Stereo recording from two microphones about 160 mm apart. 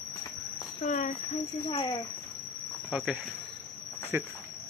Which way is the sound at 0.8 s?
50° left (ahead or behind).